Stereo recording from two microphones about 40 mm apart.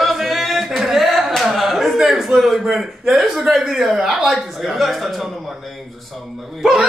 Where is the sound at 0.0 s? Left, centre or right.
Centre.